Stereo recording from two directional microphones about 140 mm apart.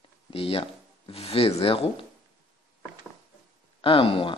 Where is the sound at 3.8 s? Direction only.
40° left (ahead or behind).